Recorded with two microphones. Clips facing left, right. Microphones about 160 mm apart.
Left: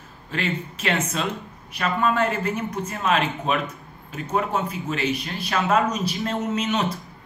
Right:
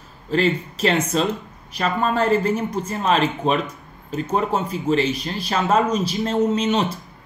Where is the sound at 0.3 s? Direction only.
35° right (ahead or behind).